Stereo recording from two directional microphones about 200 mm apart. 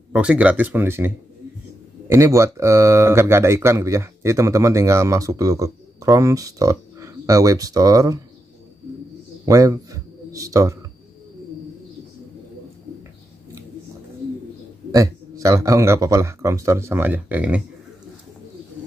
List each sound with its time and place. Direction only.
0.1 s speech: 5° right (ahead or behind)
9.5 s a sound: 15° right (ahead or behind)
14.9 s speech: 15° right (ahead or behind)